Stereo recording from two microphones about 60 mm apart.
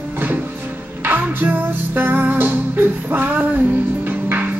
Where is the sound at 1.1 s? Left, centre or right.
Right.